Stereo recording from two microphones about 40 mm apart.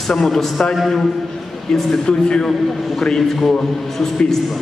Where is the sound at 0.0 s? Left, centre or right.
Centre.